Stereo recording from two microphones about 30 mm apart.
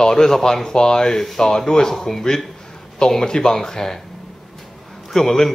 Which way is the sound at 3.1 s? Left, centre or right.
Left.